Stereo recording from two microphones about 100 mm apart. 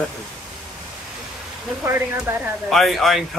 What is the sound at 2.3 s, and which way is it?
Speech, 20° right (ahead or behind).